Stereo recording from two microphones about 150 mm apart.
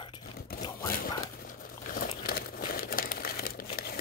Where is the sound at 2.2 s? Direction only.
80° left.